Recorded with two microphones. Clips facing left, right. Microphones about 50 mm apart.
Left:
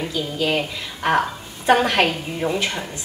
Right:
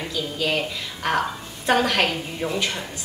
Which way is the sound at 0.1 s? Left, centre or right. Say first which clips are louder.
Left 1 dB; centre.